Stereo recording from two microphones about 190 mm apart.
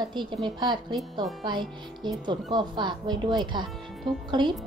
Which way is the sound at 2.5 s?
25° right (ahead or behind).